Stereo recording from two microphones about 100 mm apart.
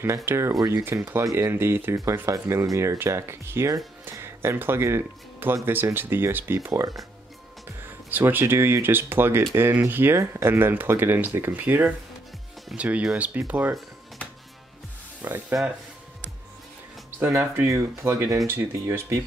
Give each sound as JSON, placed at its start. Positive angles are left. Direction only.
{"t": 0.0, "sound": "speech", "side_deg": -25}
{"t": 0.6, "sound": "speech", "side_deg": -40}
{"t": 0.8, "sound": "speech", "side_deg": -25}
{"t": 6.7, "sound": "speech", "side_deg": -35}
{"t": 7.8, "sound": "speech", "side_deg": -20}
{"t": 15.2, "sound": "speech", "side_deg": -25}
{"t": 17.6, "sound": "speech", "side_deg": -30}